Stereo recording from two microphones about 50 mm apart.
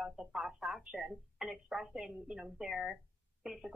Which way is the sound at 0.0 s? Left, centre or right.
Centre.